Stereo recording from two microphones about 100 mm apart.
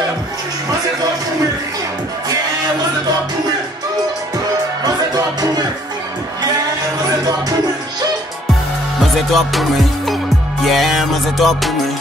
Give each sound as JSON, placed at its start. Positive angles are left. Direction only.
{"t": 4.8, "sound": "music", "side_deg": -40}
{"t": 7.1, "sound": "music", "side_deg": -40}
{"t": 9.3, "sound": "music", "side_deg": 0}